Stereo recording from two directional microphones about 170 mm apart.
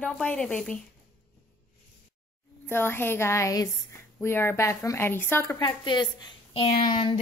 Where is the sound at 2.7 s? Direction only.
15° left (ahead or behind).